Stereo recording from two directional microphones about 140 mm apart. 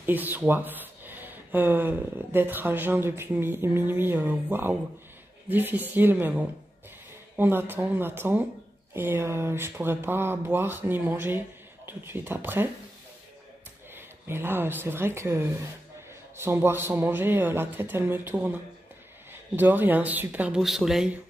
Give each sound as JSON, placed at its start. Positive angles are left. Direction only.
{"t": 0.0, "sound": "speech", "side_deg": -15}
{"t": 13.9, "sound": "speech", "side_deg": -15}